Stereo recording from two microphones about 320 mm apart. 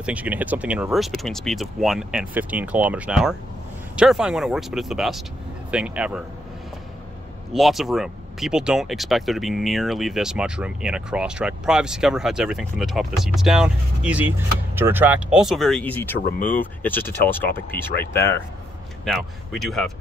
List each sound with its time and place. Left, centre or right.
0.0 s speech: centre
7.5 s speech: centre
16.3 s speech: left
16.5 s speech: centre